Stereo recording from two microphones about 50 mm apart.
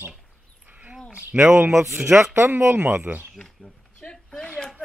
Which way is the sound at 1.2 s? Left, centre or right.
Right.